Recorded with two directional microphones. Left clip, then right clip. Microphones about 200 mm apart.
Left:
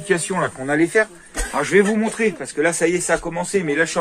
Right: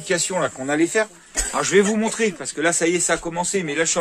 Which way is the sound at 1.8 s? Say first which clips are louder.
Left 2 dB; 20° right (ahead or behind).